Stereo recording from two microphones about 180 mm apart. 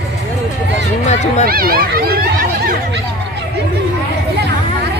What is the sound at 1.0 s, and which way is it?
Run, 40° left (ahead or behind).